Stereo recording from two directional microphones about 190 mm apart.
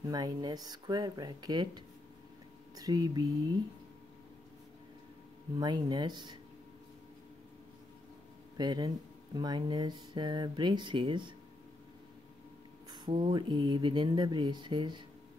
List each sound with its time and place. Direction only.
0.0 s speech: 20° right (ahead or behind)
2.7 s speech: 20° right (ahead or behind)
5.6 s speech: 20° right (ahead or behind)
8.5 s speech: 20° right (ahead or behind)
12.9 s speech: 25° right (ahead or behind)